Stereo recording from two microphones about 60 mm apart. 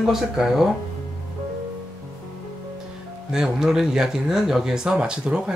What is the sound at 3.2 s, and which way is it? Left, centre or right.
Speech, centre.